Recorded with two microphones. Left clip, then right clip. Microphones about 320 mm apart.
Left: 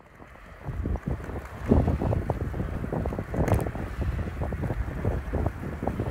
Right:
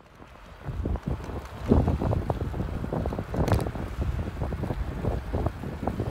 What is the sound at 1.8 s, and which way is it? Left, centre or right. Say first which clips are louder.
Boat: even; centre.